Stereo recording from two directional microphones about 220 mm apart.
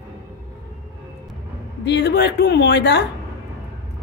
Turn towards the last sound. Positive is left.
turn(degrees=50)  # may be behind; listen again after turning